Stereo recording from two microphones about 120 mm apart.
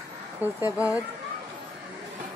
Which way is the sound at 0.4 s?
15° right (ahead or behind).